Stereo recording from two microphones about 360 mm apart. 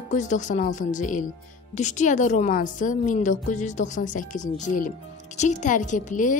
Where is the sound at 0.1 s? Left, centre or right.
Left.